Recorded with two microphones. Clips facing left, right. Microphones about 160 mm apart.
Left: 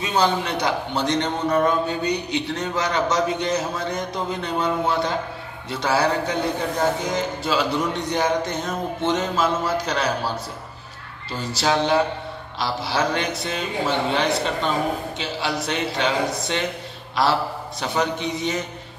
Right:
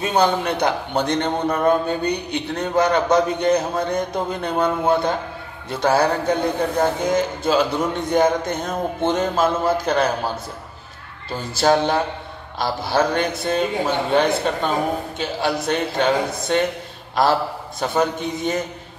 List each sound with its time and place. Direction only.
0.0 s a man's voice: 55° right (ahead or behind)
11.4 s a man's voice: 50° right (ahead or behind)